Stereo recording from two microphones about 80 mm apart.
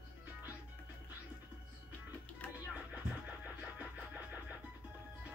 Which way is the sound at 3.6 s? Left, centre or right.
Centre.